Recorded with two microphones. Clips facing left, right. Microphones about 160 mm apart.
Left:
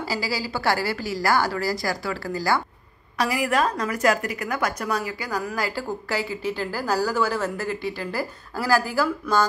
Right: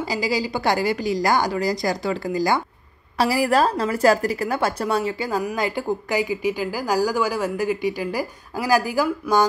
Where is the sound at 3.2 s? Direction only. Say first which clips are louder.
Right 4 dB; 35° right (ahead or behind).